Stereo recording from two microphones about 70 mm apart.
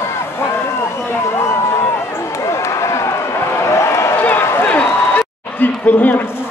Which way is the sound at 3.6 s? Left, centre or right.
Left.